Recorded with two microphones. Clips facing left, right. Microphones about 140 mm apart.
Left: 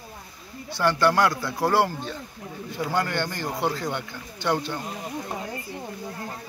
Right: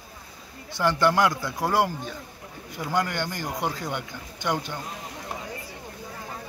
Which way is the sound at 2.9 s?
15° right (ahead or behind).